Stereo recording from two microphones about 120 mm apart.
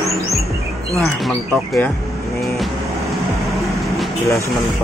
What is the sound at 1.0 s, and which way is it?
Cattle, centre (ahead or behind).